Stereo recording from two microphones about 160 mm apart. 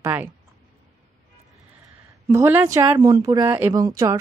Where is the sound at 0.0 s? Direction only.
10° right (ahead or behind).